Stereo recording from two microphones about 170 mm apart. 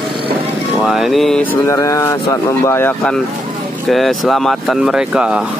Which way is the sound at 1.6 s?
20° left (ahead or behind).